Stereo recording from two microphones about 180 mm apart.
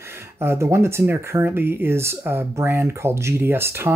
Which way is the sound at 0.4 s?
15° right (ahead or behind).